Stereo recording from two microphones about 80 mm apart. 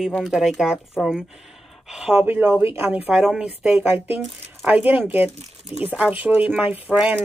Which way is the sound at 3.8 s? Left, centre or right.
Right.